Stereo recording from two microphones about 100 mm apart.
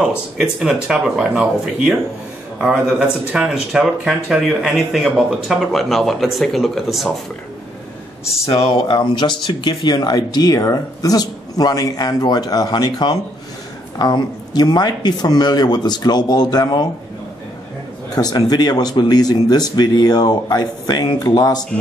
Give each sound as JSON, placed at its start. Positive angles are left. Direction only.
{"t": 0.4, "sound": "speech", "side_deg": -5}
{"t": 8.8, "sound": "speech", "side_deg": 45}
{"t": 18.1, "sound": "speech", "side_deg": 40}